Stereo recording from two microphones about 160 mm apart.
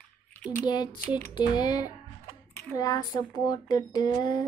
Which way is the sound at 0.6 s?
25° left (ahead or behind).